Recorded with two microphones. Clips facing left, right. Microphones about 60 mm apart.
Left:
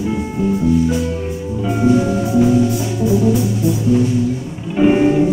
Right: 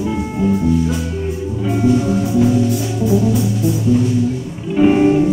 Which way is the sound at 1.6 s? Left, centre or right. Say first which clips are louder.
Left 1 dB; centre.